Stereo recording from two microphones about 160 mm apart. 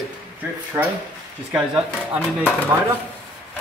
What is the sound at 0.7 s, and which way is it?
Speech, 15° right (ahead or behind).